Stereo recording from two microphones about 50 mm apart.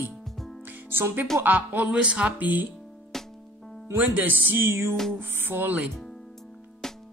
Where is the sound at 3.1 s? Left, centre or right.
Centre.